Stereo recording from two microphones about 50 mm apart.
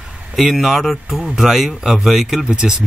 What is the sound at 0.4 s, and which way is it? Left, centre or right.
Speech, centre.